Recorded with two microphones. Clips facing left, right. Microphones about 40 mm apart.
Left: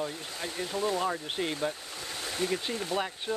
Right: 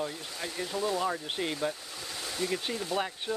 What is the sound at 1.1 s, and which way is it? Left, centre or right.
Speech, centre.